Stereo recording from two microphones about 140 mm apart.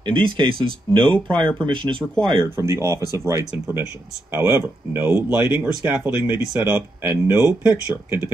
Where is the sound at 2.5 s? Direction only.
20° right (ahead or behind).